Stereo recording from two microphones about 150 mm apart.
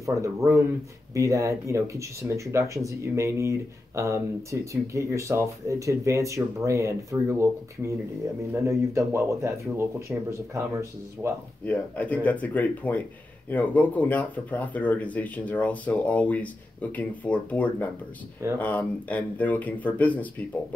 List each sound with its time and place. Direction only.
0.0 s speech: 20° right (ahead or behind)
11.6 s speech: 10° left (ahead or behind)